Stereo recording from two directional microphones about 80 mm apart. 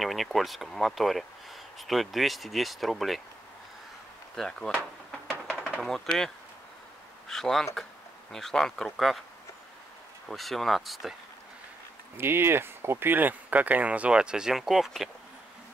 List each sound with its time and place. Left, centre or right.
0.0 s speech: centre
4.4 s speech: centre
5.8 s speech: centre
10.2 s speech: centre
12.2 s speech: right; by 15.0 s centre